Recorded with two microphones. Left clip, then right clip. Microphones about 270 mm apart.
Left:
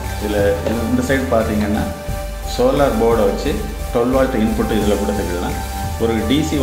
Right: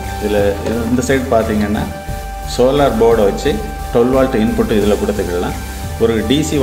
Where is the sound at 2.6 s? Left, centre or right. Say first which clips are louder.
Right 3 dB; right.